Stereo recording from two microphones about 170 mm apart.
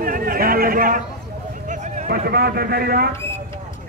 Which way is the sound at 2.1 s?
65° right (ahead or behind).